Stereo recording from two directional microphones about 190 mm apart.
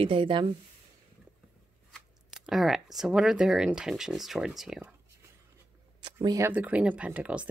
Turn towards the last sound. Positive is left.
turn(degrees=-5)  # may be behind; listen again after turning